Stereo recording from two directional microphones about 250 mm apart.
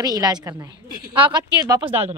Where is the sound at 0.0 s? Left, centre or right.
Centre.